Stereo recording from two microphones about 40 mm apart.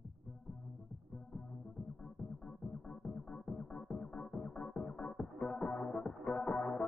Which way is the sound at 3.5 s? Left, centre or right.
Left.